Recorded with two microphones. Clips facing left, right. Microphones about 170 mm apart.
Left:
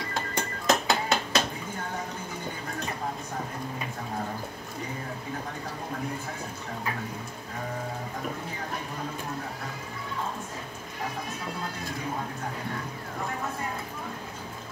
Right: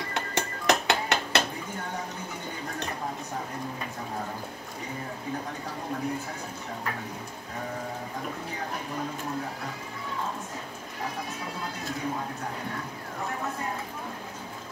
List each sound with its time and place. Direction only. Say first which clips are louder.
0.1 s music: right 2 dB; 75° right (ahead or behind)